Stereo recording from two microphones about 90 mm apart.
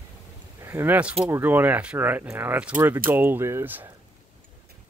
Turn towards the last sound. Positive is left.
turn(degrees=-25)  # may be behind; listen again after turning